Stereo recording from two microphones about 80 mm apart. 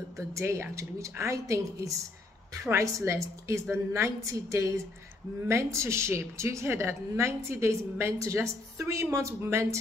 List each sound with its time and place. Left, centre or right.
0.3 s a woman's voice: right